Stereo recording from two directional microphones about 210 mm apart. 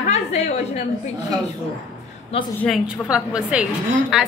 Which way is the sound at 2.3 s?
25° left (ahead or behind).